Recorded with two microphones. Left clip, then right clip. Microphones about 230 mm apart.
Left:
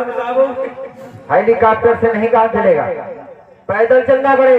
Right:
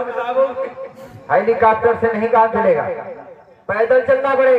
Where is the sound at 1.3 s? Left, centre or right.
Right.